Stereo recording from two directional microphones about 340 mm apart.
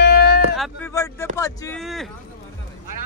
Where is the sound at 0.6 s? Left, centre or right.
Centre.